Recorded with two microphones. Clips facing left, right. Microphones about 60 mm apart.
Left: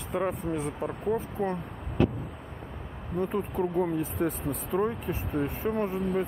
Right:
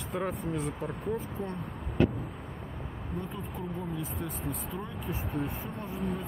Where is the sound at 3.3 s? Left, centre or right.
Left.